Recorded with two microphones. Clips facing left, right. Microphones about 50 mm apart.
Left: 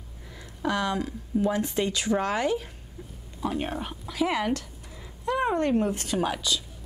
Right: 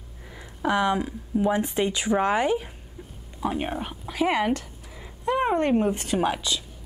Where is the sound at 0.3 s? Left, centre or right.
Centre.